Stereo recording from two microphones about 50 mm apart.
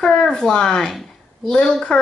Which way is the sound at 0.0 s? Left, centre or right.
Centre.